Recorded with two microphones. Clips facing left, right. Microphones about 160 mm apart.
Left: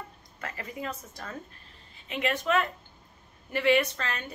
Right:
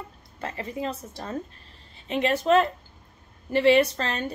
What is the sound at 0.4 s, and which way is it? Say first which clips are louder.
A woman's voice: right 6 dB; 25° right (ahead or behind).